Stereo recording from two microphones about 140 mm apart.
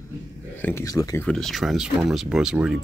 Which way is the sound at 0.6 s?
15° left (ahead or behind).